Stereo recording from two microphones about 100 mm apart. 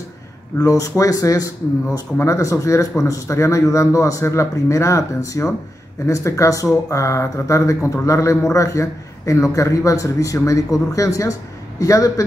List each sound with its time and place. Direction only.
0.6 s speech: 35° left (ahead or behind)